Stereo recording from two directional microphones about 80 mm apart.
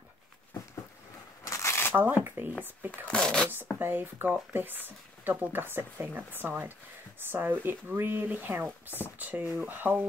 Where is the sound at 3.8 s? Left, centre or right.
Right.